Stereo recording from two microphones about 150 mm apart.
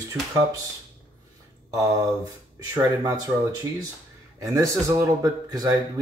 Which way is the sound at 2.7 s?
20° right (ahead or behind).